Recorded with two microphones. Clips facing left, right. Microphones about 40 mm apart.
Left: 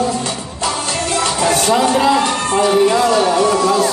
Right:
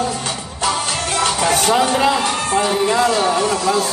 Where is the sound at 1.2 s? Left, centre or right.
Right.